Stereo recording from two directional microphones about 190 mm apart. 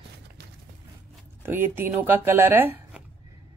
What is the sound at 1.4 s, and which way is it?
Speech, 10° right (ahead or behind).